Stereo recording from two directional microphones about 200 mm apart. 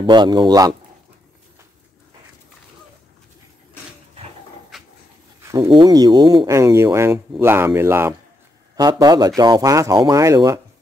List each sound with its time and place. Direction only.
0.0 s speech: 20° right (ahead or behind)
4.7 s dog: centre (ahead or behind)
5.4 s speech: 15° right (ahead or behind)